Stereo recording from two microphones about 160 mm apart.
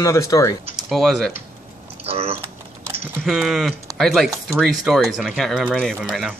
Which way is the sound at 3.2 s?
Centre (ahead or behind).